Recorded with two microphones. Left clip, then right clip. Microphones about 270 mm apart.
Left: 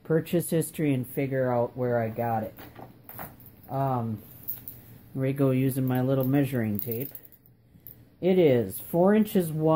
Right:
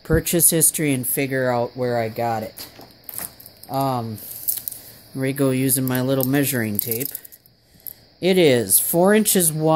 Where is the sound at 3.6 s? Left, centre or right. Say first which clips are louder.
Right 6 dB; right.